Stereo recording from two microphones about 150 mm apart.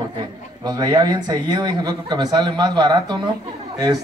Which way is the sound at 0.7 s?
25° right (ahead or behind).